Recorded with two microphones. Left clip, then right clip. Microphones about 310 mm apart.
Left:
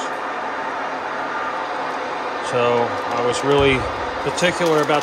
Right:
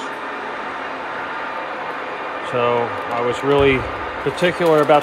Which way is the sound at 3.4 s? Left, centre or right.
Centre.